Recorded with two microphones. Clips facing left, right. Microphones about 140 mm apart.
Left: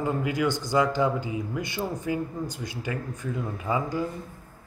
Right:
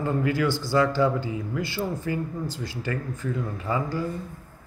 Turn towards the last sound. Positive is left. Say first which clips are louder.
# even
turn(degrees=15)  # may be behind; listen again after turning